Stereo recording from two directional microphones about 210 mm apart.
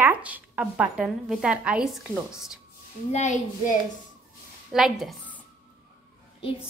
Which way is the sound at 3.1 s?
35° left (ahead or behind).